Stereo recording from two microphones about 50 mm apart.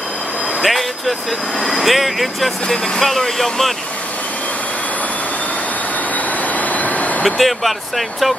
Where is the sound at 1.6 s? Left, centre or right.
Centre.